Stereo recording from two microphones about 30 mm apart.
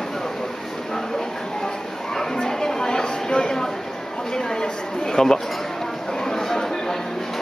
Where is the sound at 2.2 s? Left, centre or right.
Centre.